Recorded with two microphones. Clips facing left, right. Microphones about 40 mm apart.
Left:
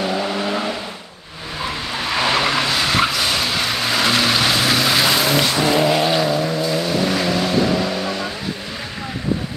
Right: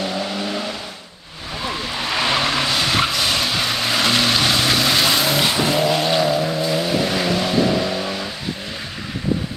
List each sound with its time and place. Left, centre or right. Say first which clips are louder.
0.0 s vehicle: left 3 dB; centre
2.0 s vehicle: left 2 dB; centre